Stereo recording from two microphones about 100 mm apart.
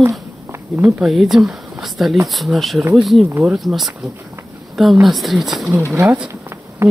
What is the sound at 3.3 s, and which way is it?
Speech, 30° right (ahead or behind).